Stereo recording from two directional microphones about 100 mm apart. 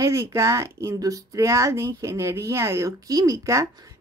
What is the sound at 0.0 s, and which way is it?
Speech, 30° right (ahead or behind).